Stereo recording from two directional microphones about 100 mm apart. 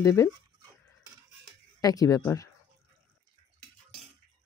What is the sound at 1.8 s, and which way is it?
Speech, 35° left (ahead or behind).